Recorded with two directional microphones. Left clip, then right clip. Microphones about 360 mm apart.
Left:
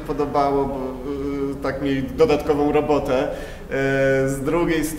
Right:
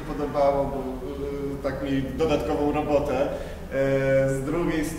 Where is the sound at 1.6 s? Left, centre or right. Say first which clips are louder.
Left 4 dB; left.